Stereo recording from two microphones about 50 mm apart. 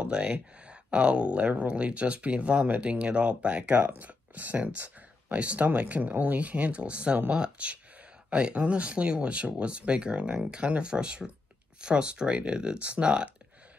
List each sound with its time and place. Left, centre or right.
0.0 s speech: right